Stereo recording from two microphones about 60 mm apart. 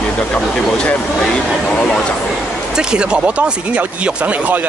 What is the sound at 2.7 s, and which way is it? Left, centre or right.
Speech, centre.